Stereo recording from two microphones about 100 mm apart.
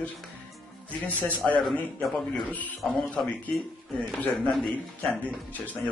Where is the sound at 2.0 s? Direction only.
Centre (ahead or behind).